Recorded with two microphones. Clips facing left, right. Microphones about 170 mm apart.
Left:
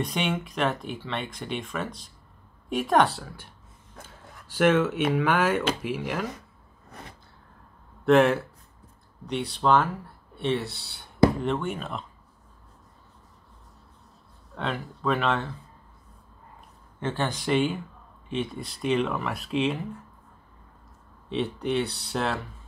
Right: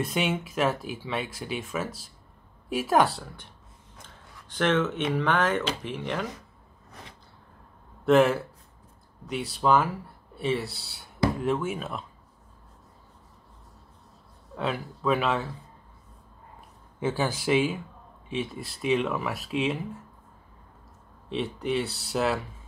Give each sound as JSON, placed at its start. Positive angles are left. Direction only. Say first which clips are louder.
{"t": 0.0, "sound": "speech", "louder": "even", "side_deg": -5}
{"t": 4.0, "sound": "a sound", "louder": "left 4 dB", "side_deg": 10}
{"t": 5.1, "sound": "speech", "louder": "even", "side_deg": 10}
{"t": 8.0, "sound": "speech", "louder": "left 1 dB", "side_deg": 0}
{"t": 14.6, "sound": "speech", "louder": "right 1 dB", "side_deg": -5}
{"t": 17.0, "sound": "speech", "louder": "right 1 dB", "side_deg": -5}
{"t": 21.3, "sound": "speech", "louder": "left 1 dB", "side_deg": 0}